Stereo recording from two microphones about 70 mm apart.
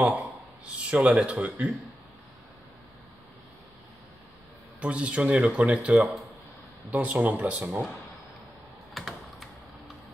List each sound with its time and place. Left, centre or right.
0.7 s speech: centre
4.7 s speech: centre
5.9 s speech: centre
6.9 s speech: right
7.6 s speech: centre
8.9 s typing: centre